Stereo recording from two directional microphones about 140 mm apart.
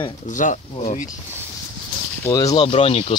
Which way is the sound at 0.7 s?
50° left (ahead or behind).